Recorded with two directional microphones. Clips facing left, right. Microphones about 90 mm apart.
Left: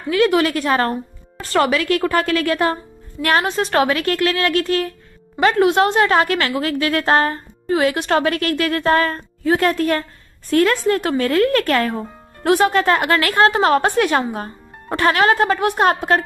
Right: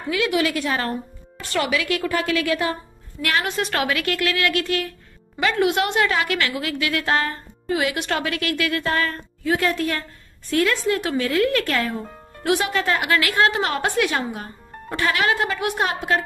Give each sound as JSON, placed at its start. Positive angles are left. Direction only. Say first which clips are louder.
{"t": 0.1, "sound": "a woman's voice", "louder": "left 6 dB", "side_deg": 45}
{"t": 12.4, "sound": "a woman's voice", "louder": "left 6 dB", "side_deg": 40}